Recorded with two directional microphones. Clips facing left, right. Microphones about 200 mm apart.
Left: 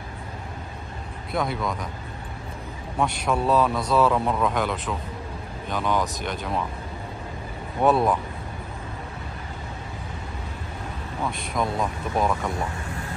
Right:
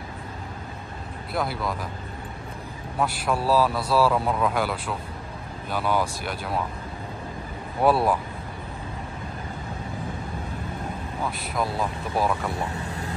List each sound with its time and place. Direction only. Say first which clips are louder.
1.3 s speech: left 1 dB; 5° right (ahead or behind)
3.0 s speech: left 1 dB; 5° right (ahead or behind)
7.8 s speech: left 1 dB; 5° right (ahead or behind)
11.2 s speech: left 2 dB; 5° right (ahead or behind)
12.5 s speech: even; 35° right (ahead or behind)